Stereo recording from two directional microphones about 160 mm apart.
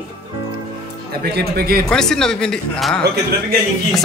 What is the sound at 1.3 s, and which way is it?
Speech, 75° right (ahead or behind).